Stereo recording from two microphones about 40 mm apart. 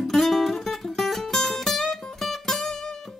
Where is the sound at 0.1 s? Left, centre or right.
Centre.